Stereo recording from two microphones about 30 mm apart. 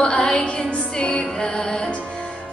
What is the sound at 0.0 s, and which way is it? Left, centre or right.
Music, left.